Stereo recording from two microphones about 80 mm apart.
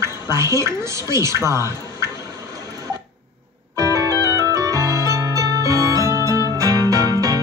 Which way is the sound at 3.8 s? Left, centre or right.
Right.